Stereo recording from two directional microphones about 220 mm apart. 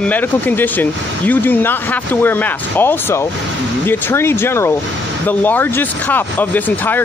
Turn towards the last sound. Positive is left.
turn(degrees=10)  # may be behind; listen again after turning